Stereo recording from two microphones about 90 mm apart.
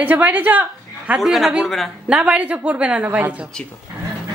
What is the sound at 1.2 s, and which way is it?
Speech, centre (ahead or behind).